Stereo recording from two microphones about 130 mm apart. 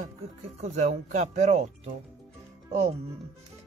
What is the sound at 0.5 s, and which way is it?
Speech, 65° right (ahead or behind).